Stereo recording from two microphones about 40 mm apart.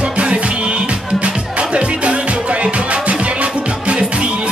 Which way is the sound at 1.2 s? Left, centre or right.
Right.